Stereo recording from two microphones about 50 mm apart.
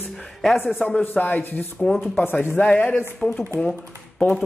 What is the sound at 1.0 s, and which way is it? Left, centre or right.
Speech, left.